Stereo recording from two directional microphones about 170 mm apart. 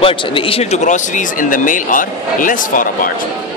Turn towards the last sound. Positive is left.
turn(degrees=55)  # may be behind; listen again after turning